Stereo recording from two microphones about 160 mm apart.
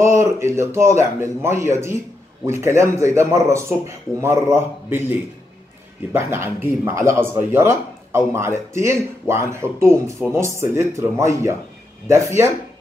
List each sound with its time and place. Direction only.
0.0 s speech: 15° right (ahead or behind)
6.1 s speech: 15° right (ahead or behind)